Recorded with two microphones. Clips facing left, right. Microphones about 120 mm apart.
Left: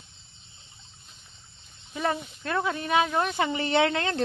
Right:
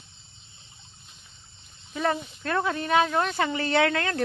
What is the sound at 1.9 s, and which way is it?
Speech, 15° left (ahead or behind).